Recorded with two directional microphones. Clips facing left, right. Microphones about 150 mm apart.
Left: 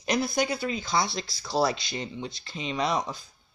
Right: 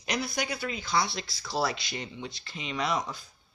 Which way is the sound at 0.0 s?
45° left (ahead or behind).